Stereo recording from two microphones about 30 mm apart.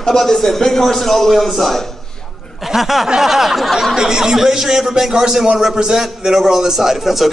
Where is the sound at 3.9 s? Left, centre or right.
Right.